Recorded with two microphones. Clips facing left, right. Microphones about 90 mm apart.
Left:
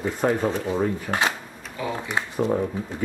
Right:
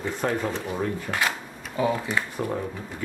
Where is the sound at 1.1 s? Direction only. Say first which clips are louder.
Left 3 dB; 25° left (ahead or behind).